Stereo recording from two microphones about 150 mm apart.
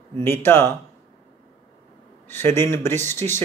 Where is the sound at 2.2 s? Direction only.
15° left (ahead or behind).